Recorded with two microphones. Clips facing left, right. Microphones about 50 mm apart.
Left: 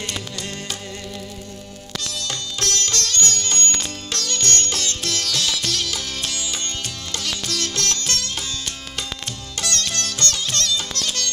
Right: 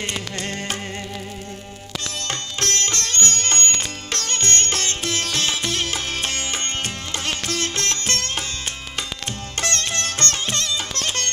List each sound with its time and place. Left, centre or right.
0.4 s music: right
2.2 s music: right
9.6 s sitar: right
10.5 s music: right
11.0 s music: right